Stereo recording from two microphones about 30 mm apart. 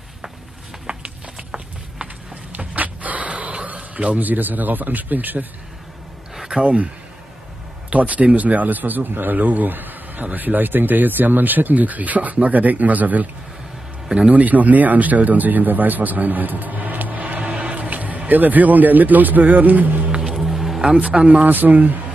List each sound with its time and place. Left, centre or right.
0.9 s a sound: right
2.5 s a sound: right
4.2 s speech: right
6.5 s speech: right
7.9 s speech: right
14.3 s speech: right
17.7 s speech: right
20.4 s music: centre
20.9 s speech: right
21.5 s speech: right